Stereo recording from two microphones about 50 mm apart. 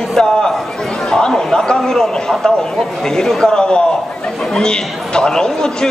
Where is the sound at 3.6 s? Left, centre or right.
Centre.